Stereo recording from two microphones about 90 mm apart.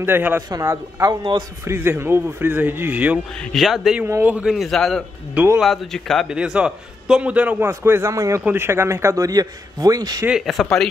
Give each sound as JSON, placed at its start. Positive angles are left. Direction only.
{"t": 0.0, "sound": "a man's voice", "side_deg": -25}
{"t": 3.5, "sound": "speech", "side_deg": 0}
{"t": 4.2, "sound": "a man's voice", "side_deg": -15}
{"t": 4.5, "sound": "speech", "side_deg": 0}
{"t": 5.3, "sound": "speech", "side_deg": -20}
{"t": 5.6, "sound": "speech", "side_deg": 5}
{"t": 6.2, "sound": "a man's voice", "side_deg": -10}
{"t": 7.6, "sound": "a man's voice", "side_deg": -25}
{"t": 10.4, "sound": "speech", "side_deg": 0}